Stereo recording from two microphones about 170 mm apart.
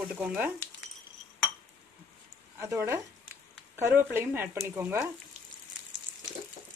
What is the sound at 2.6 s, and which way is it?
Speech, 15° right (ahead or behind).